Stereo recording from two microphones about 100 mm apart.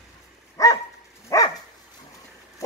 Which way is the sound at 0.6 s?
35° left (ahead or behind).